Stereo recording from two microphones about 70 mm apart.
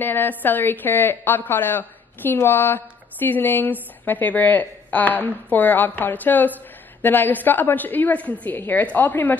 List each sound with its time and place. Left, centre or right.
0.0 s a woman's voice: left